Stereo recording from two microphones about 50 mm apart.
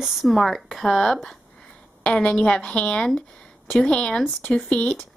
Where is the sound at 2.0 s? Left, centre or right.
Left.